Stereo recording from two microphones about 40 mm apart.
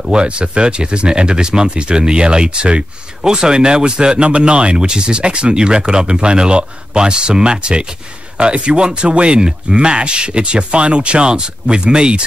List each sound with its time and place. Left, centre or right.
0.0 s speech: right